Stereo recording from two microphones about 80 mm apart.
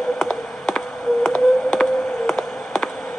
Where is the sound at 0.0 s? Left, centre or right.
Centre.